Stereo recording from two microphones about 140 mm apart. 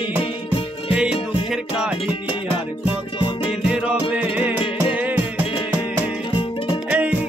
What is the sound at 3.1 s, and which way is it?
Music, 40° left (ahead or behind).